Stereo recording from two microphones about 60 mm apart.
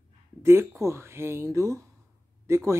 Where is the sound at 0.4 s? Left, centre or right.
Right.